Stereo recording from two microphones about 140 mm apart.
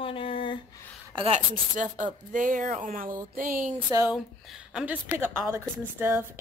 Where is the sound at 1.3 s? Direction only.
65° right (ahead or behind).